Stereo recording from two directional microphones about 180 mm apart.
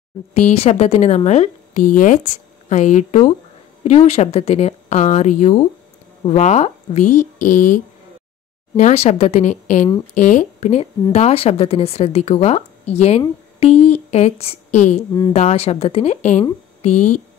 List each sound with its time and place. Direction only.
0.3 s speech: 35° left (ahead or behind)